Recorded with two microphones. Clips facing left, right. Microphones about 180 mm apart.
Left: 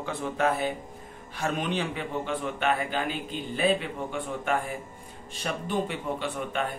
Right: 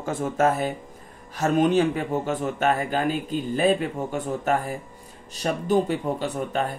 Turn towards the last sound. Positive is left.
turn(degrees=-40)  # may be behind; listen again after turning